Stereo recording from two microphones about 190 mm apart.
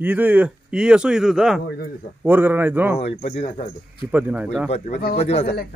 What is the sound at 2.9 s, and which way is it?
Speech, 35° left (ahead or behind).